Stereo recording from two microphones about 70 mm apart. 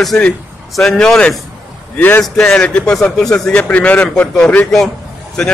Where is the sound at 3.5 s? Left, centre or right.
Centre.